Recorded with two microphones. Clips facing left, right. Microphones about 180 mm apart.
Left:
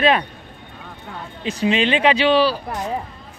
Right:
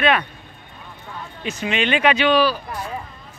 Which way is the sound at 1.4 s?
30° left (ahead or behind).